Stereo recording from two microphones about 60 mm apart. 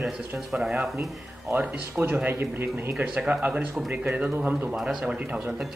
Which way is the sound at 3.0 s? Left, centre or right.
Centre.